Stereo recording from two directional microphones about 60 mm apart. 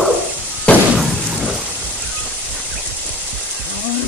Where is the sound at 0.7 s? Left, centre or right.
Left.